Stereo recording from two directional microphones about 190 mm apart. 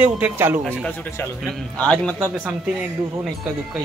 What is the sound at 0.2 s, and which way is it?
Speech, 10° right (ahead or behind).